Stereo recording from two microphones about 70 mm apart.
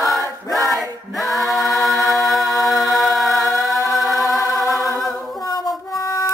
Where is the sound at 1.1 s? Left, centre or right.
Centre.